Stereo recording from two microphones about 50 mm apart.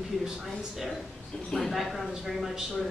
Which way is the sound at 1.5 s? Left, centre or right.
Centre.